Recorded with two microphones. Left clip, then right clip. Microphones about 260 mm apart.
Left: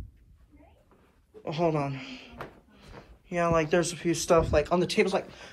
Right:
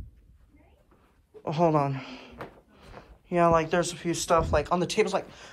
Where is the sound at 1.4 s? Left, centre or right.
Right.